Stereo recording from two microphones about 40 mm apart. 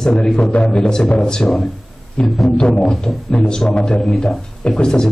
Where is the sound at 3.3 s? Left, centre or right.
Centre.